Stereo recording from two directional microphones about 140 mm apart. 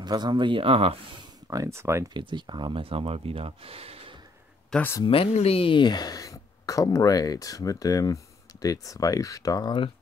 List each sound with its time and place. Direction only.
0.0 s speech: 30° right (ahead or behind)
1.5 s speech: 20° right (ahead or behind)
2.1 s speech: 35° right (ahead or behind)
4.6 s speech: 10° left (ahead or behind)
5.0 s speech: 40° left (ahead or behind)